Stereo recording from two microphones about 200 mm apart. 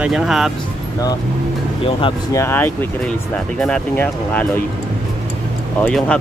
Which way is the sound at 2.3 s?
10° left (ahead or behind).